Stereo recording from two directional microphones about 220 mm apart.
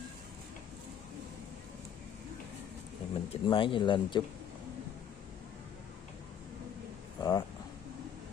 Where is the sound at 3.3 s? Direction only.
25° left (ahead or behind).